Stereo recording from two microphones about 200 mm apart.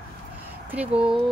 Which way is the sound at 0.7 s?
5° right (ahead or behind).